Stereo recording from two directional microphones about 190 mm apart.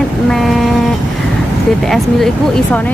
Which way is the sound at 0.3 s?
Centre (ahead or behind).